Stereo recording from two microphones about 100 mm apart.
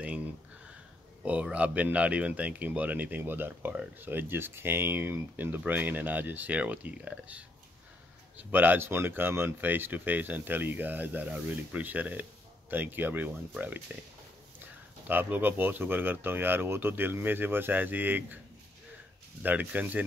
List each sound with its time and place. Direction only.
0.0 s a sound: 15° right (ahead or behind)
1.2 s speech: 10° right (ahead or behind)
15.0 s speech: 20° right (ahead or behind)
19.4 s speech: 15° right (ahead or behind)